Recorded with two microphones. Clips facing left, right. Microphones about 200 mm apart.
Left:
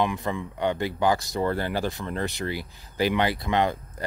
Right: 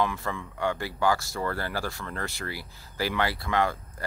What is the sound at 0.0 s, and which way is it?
Speech, 20° left (ahead or behind).